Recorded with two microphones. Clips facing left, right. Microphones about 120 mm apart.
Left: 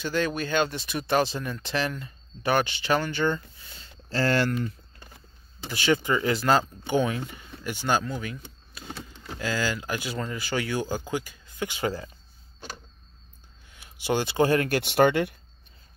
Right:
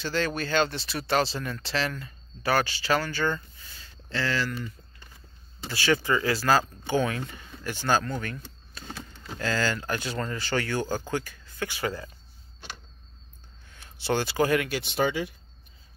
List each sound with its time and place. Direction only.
0.0 s speech: 15° left (ahead or behind)
4.1 s speech: 45° left (ahead or behind)
5.7 s speech: 20° left (ahead or behind)
13.7 s speech: 15° left (ahead or behind); by 14.7 s 30° left (ahead or behind)
14.7 s speech: 60° left (ahead or behind)